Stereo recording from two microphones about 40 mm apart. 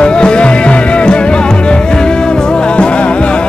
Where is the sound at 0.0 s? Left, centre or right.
Left.